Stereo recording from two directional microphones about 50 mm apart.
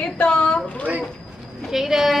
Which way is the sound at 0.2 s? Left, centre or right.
Left.